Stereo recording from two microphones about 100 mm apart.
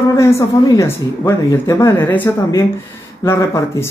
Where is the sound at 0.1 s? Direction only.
30° left (ahead or behind).